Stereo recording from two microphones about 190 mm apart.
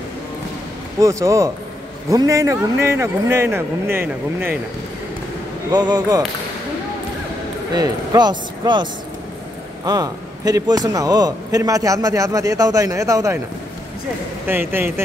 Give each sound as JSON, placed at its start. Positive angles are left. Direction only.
{"t": 1.0, "sound": "a man's voice", "side_deg": -15}
{"t": 5.7, "sound": "speech", "side_deg": -20}
{"t": 7.7, "sound": "speech", "side_deg": -20}
{"t": 9.8, "sound": "a man's voice", "side_deg": -20}
{"t": 14.5, "sound": "a man's voice", "side_deg": -10}